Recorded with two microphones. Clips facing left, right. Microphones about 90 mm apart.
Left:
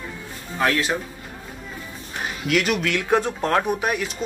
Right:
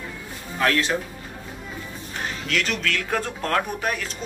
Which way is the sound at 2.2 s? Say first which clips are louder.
Left 5 dB; 10° left (ahead or behind).